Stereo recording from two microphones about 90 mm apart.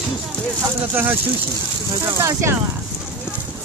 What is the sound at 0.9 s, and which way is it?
Speech, 20° right (ahead or behind).